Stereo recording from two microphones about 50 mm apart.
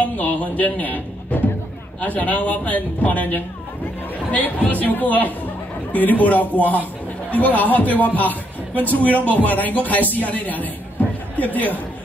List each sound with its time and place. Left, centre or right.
0.0 s music: left
2.0 s a man's voice: left